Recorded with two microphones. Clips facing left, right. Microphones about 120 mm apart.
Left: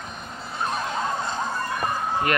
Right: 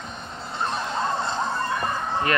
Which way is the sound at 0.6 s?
5° left (ahead or behind).